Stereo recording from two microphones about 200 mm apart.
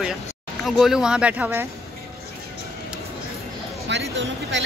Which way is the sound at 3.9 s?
65° right (ahead or behind).